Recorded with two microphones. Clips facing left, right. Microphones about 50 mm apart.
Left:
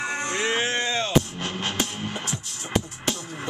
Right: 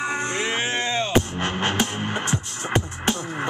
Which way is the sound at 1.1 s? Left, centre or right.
Right.